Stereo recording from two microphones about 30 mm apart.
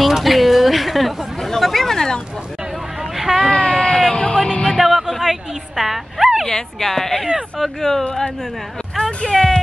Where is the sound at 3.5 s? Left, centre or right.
Left.